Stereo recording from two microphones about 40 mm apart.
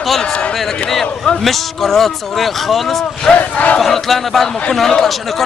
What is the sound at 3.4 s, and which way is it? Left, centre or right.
Battle cry, left.